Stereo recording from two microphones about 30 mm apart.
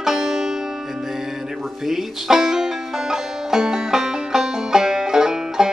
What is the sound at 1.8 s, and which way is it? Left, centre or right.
Banjo, centre.